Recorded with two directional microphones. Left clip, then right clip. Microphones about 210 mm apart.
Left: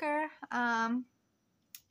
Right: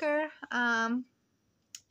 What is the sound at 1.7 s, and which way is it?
Typing, centre (ahead or behind).